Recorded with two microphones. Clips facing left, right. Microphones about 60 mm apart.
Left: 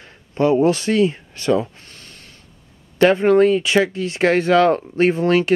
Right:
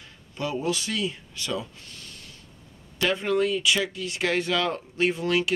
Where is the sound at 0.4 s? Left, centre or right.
Left.